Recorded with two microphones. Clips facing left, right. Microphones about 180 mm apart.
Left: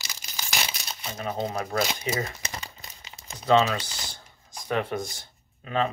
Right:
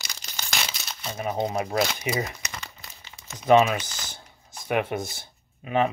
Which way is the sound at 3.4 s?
15° right (ahead or behind).